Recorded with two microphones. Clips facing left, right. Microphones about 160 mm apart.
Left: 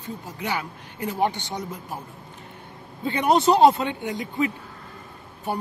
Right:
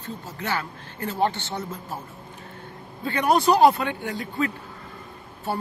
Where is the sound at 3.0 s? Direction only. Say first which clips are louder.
Left 1 dB; 20° left (ahead or behind).